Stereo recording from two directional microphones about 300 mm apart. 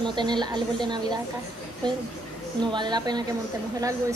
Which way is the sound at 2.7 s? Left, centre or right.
Centre.